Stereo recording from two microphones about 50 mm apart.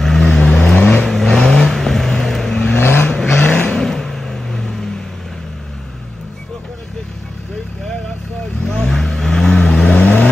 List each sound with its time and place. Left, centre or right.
0.0 s vehicle: centre
2.8 s vehicle: left
3.1 s vehicle: centre
3.3 s vehicle: left
3.7 s a sound: centre
8.6 s vehicle: centre